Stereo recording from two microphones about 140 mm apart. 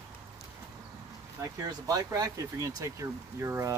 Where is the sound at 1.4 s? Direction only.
25° right (ahead or behind).